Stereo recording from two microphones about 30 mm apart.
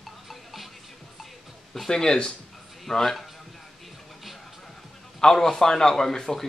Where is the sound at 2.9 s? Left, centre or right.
Centre.